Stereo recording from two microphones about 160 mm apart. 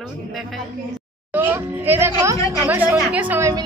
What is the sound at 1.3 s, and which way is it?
A woman's voice, 10° right (ahead or behind).